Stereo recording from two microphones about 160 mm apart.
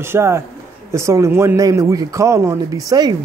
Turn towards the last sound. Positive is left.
turn(degrees=-25)  # may be behind; listen again after turning